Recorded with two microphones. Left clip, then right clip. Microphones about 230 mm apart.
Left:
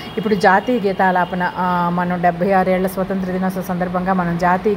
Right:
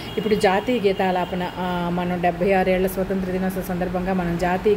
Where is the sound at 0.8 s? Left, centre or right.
Centre.